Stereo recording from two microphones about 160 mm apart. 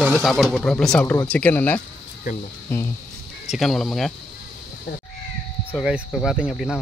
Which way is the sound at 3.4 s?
Centre (ahead or behind).